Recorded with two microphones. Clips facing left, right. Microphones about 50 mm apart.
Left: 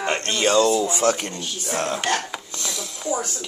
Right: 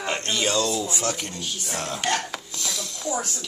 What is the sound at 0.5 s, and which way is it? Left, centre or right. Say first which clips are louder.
Speech: left 7 dB; left.